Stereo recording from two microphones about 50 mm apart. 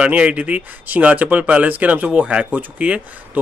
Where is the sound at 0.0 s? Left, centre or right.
Right.